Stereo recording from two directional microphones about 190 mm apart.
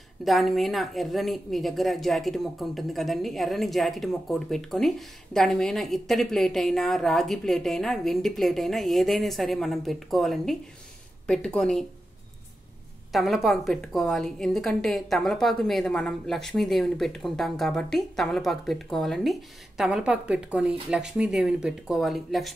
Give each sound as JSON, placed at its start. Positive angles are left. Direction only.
{"t": 0.2, "sound": "a woman's voice", "side_deg": 0}
{"t": 13.1, "sound": "a woman's voice", "side_deg": 0}